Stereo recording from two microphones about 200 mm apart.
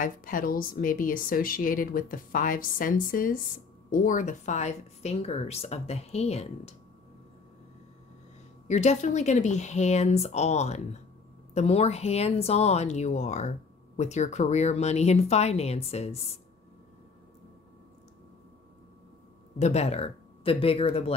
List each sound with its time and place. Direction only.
0.0 s speech: 45° left (ahead or behind)
8.6 s speech: 35° left (ahead or behind)
19.6 s speech: 35° left (ahead or behind)